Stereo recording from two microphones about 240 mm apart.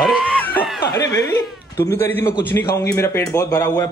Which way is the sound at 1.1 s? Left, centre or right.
Centre.